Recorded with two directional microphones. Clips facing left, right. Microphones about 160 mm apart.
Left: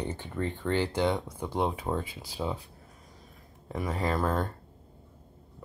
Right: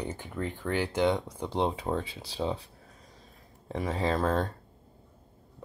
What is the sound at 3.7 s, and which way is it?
Speech, 25° right (ahead or behind).